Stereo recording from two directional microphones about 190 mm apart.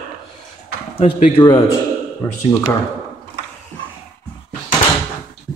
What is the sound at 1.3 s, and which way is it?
Speech, 25° left (ahead or behind).